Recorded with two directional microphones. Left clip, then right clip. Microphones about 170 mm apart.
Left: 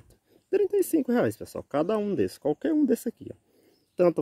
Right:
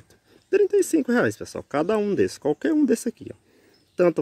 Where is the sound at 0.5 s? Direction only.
5° left (ahead or behind).